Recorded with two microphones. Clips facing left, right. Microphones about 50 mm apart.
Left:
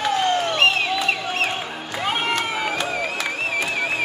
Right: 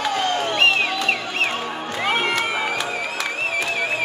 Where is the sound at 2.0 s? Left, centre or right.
Centre.